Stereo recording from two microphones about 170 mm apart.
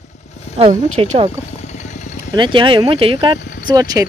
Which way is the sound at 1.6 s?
45° left (ahead or behind).